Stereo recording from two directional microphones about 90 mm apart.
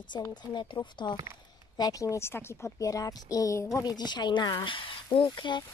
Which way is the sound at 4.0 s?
55° left (ahead or behind).